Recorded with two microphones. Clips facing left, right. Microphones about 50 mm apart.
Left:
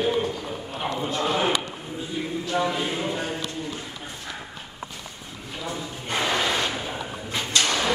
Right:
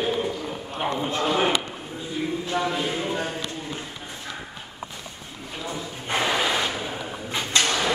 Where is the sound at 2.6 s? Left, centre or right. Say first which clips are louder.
Left 1 dB; centre.